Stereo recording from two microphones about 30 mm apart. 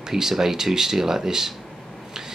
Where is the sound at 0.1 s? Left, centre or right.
Centre.